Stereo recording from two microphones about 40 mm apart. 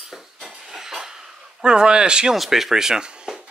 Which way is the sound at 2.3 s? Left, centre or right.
Centre.